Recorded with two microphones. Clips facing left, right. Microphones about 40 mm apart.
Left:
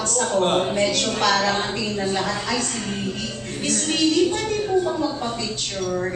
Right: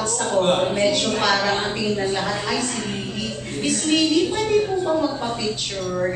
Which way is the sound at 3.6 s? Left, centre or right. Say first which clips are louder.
Right 2 dB; centre.